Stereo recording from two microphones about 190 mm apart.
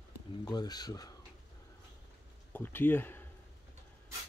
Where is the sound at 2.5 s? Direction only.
10° left (ahead or behind).